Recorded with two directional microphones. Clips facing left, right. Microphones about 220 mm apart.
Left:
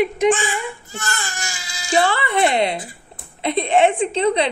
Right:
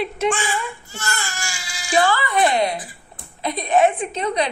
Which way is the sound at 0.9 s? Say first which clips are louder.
Even; 20° left (ahead or behind).